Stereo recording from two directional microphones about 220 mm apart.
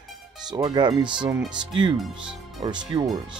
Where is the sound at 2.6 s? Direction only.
20° right (ahead or behind).